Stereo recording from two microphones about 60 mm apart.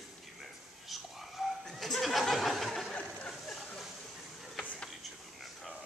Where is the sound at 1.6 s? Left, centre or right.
Centre.